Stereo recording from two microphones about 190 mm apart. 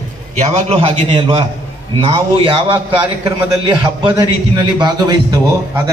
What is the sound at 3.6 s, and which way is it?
A man's voice, 25° right (ahead or behind).